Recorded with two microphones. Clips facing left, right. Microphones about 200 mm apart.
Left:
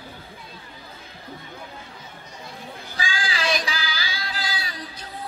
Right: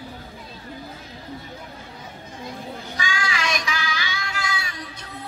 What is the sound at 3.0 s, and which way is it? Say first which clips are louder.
Child singing: even; 30° left (ahead or behind).